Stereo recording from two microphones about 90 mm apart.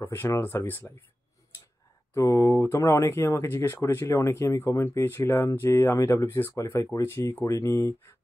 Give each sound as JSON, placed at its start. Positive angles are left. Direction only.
{"t": 0.0, "sound": "speech", "side_deg": 25}
{"t": 2.1, "sound": "speech", "side_deg": 35}